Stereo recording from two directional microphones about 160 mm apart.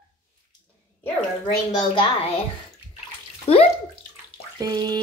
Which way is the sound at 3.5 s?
35° left (ahead or behind).